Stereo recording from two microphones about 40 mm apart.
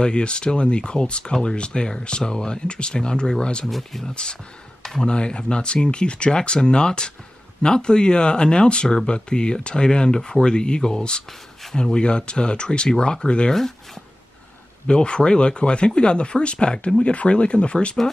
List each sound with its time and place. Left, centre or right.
0.0 s speech: left
3.6 s speech: centre
4.0 s speech: left
13.5 s speech: centre
14.9 s speech: left